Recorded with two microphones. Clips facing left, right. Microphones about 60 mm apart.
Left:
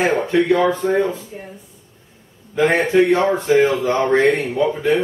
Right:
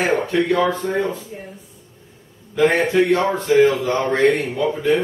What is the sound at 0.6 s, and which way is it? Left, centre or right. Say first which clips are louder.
Speech: left 2 dB; centre.